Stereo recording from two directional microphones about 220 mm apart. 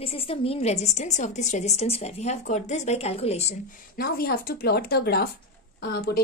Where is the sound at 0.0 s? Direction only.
25° left (ahead or behind).